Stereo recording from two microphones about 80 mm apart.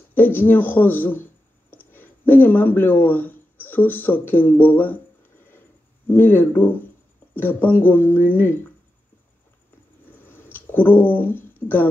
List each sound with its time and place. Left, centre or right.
0.1 s speech: left
6.0 s speech: left
10.0 s a sound: left